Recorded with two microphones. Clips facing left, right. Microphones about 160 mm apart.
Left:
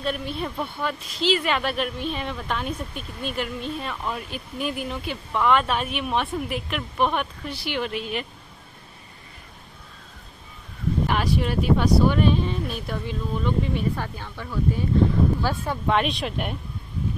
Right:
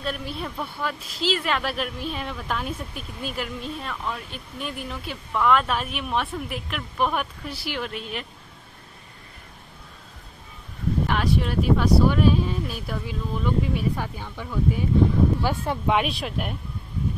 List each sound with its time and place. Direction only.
0.0 s speech: centre (ahead or behind)
3.9 s speech: 10° left (ahead or behind)
11.1 s speech: centre (ahead or behind); by 16.0 s 20° right (ahead or behind)
16.0 s speech: 5° right (ahead or behind)